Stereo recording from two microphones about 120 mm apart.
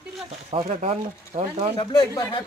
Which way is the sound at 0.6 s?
65° right (ahead or behind).